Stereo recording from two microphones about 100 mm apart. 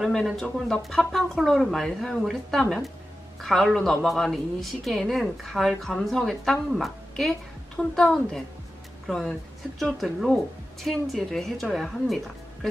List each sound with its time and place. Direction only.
0.0 s a woman's voice: 5° left (ahead or behind)